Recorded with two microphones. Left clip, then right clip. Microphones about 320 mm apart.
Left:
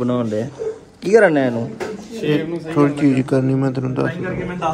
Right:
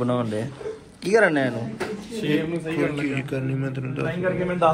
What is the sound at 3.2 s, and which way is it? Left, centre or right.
Speech, left.